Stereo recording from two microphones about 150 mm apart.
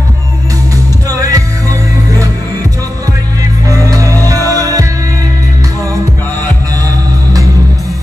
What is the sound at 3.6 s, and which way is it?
Music, 20° right (ahead or behind).